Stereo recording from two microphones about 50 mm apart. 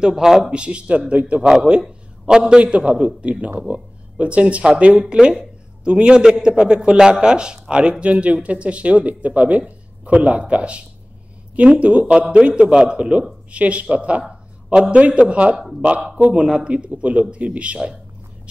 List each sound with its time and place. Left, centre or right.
0.0 s a man's voice: centre
0.4 s a man's voice: right
1.4 s a man's voice: centre
4.9 s a man's voice: centre
15.5 s speech: centre
16.6 s a man's voice: right